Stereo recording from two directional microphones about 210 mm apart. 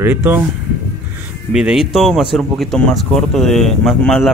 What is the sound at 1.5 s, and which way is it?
Speech, 5° right (ahead or behind).